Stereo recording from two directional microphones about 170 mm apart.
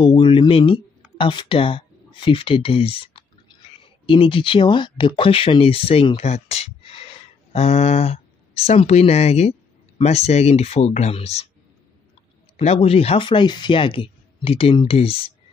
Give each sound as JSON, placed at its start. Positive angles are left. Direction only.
{"t": 0.0, "sound": "speech", "side_deg": 30}
{"t": 12.5, "sound": "speech", "side_deg": 35}